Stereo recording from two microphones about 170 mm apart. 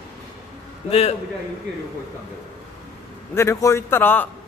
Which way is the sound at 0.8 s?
35° left (ahead or behind).